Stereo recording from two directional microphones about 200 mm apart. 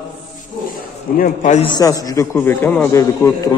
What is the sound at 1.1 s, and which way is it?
Speech, 40° left (ahead or behind).